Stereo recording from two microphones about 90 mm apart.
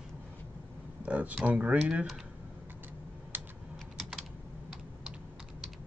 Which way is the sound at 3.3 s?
20° right (ahead or behind).